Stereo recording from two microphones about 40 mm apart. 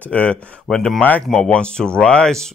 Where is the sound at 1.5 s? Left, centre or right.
Left.